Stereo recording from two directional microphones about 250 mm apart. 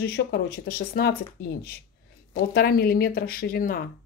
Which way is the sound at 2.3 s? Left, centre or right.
Left.